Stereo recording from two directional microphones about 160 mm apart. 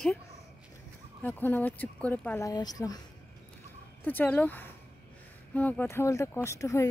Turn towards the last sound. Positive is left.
turn(degrees=20)  # may be behind; listen again after turning